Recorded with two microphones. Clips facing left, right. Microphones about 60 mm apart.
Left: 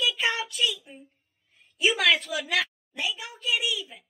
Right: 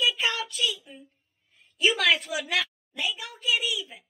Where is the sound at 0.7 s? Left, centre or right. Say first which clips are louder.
Even; left.